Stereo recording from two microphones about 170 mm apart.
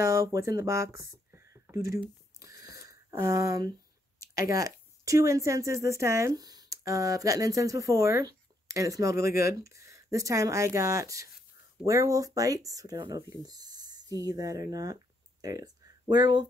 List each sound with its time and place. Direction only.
0.0 s speech: 15° right (ahead or behind)
0.9 s a sound: 15° right (ahead or behind)
2.6 s wheeze: 65° left (ahead or behind)
2.9 s speech: 20° right (ahead or behind)